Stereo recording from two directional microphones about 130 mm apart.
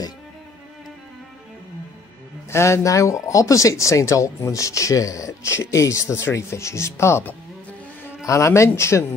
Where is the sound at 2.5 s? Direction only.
20° left (ahead or behind).